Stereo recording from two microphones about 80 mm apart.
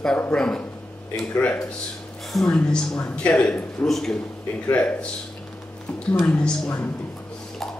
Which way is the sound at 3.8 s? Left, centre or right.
Centre.